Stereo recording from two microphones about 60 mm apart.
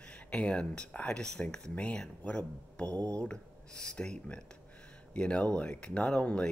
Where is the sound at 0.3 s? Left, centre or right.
Centre.